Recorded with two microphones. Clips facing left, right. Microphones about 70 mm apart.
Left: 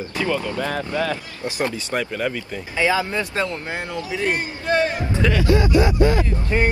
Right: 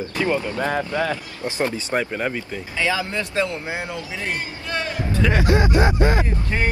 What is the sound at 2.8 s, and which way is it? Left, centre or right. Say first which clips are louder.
A man's voice: left 3 dB; centre.